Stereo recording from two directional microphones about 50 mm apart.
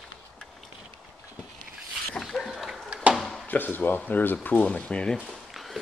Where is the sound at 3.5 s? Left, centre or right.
Left.